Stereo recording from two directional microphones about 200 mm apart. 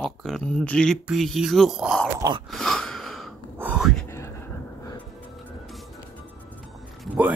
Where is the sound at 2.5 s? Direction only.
Centre (ahead or behind).